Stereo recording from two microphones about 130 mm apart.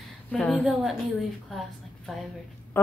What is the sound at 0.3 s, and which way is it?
Speech, 5° left (ahead or behind).